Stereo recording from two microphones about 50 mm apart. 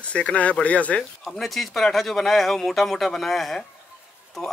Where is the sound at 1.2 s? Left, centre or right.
Centre.